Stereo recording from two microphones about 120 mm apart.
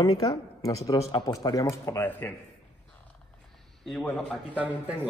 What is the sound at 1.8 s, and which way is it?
Speech, 20° left (ahead or behind).